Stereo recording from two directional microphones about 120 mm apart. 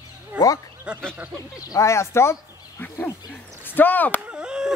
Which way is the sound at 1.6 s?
25° left (ahead or behind).